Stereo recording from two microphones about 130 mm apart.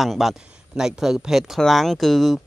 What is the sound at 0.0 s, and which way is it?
Speech, centre (ahead or behind).